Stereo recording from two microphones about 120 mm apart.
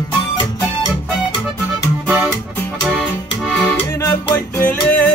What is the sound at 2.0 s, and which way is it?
Music, 10° right (ahead or behind).